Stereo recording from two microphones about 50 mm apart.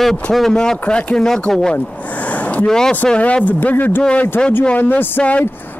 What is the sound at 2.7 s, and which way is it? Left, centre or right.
Speech, centre.